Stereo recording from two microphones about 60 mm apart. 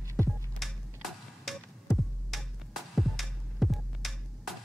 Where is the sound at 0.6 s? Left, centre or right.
Centre.